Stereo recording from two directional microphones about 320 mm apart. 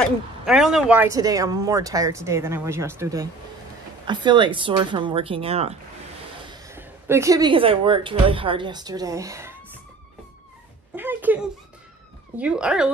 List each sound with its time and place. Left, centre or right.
0.0 s a woman's voice: centre
11.0 s speech: centre